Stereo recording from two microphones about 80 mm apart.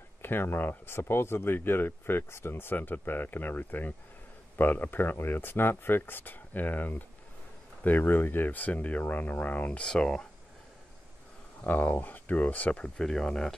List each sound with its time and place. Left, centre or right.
0.2 s speech: left; by 10.2 s centre
11.6 s speech: left